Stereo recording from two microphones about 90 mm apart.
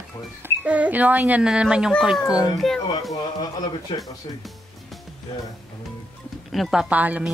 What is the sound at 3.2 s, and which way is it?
Speech, 55° left (ahead or behind).